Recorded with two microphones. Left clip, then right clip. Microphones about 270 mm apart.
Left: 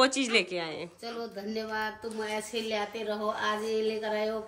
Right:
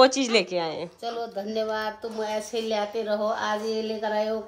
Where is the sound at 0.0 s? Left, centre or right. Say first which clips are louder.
Right 6 dB; centre.